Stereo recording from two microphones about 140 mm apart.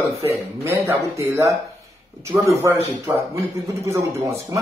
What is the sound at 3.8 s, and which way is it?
Speech, 20° right (ahead or behind).